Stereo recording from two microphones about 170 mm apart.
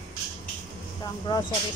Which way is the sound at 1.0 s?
25° left (ahead or behind).